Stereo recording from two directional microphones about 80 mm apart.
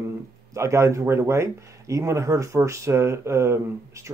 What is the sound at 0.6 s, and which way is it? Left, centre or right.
Speech, right.